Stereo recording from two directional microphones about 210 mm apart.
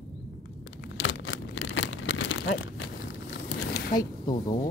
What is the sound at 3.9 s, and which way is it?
Speech, 20° left (ahead or behind).